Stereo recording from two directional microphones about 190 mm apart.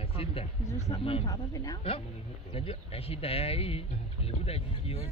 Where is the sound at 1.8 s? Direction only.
30° left (ahead or behind).